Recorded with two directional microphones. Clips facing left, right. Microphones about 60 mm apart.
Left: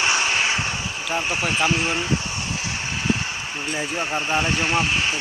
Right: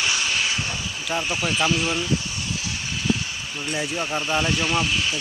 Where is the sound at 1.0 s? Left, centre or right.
Left.